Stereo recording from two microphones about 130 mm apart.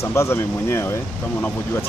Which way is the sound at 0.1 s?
20° left (ahead or behind).